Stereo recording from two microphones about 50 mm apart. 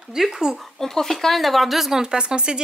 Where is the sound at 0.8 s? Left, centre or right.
Centre.